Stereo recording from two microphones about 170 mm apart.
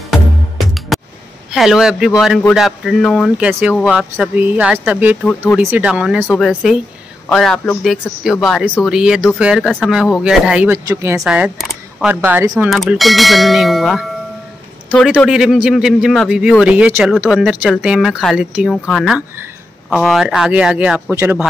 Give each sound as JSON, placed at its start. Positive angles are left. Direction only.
{"t": 0.9, "sound": "a sound", "side_deg": 0}
{"t": 1.5, "sound": "a man's voice", "side_deg": 0}
{"t": 3.3, "sound": "a man's voice", "side_deg": -10}
{"t": 10.9, "sound": "speech", "side_deg": -15}
{"t": 11.1, "sound": "a man's voice", "side_deg": -5}
{"t": 15.2, "sound": "a man's voice", "side_deg": -5}